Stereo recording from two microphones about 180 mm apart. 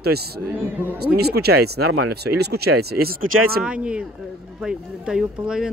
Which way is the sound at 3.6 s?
5° right (ahead or behind).